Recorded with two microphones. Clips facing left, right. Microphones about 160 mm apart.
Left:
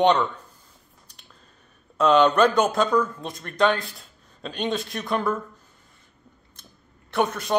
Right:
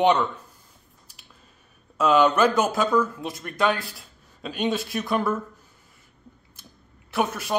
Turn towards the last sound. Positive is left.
turn(degrees=-5)  # may be behind; listen again after turning